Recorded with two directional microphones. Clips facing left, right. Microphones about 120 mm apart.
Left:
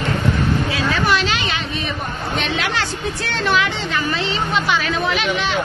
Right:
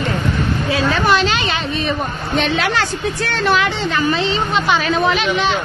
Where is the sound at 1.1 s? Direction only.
30° right (ahead or behind).